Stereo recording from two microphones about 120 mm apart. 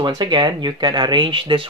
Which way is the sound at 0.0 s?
40° right (ahead or behind).